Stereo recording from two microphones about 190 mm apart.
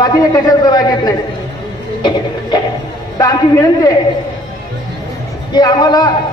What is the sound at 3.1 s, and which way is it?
Speech, 20° left (ahead or behind).